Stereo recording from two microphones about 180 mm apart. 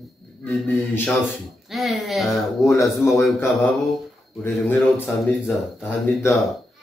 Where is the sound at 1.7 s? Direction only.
Centre (ahead or behind).